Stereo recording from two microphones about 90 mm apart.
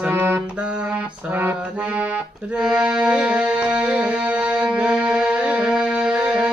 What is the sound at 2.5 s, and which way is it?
Music, 10° right (ahead or behind).